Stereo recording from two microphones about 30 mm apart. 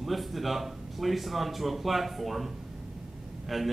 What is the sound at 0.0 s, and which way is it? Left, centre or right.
A man's voice, centre.